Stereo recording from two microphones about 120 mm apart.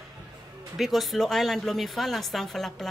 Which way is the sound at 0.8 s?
Centre (ahead or behind).